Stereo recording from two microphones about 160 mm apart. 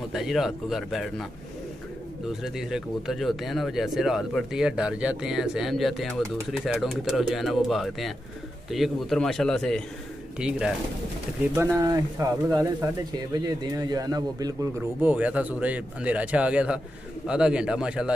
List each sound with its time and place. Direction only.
0.1 s speech: centre (ahead or behind)
2.4 s speech: centre (ahead or behind)
11.5 s speech: 15° right (ahead or behind)
15.0 s speech: 10° right (ahead or behind)